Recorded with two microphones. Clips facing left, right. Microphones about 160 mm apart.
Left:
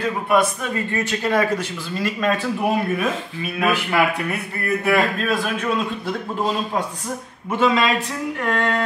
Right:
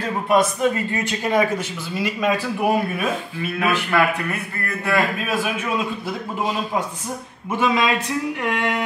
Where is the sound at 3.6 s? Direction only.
15° left (ahead or behind).